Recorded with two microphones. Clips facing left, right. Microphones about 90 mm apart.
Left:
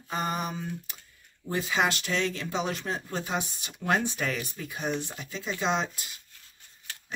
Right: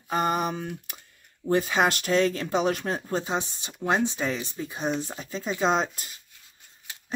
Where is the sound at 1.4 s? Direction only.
45° right (ahead or behind).